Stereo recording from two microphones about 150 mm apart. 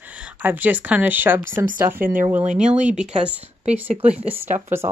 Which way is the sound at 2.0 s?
65° right (ahead or behind).